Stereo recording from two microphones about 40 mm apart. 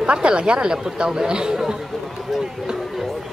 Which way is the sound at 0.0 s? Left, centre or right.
Right.